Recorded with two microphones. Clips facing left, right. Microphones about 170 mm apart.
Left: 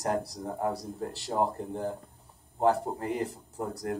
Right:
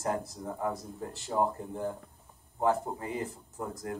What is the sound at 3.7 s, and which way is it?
Speech, 40° left (ahead or behind).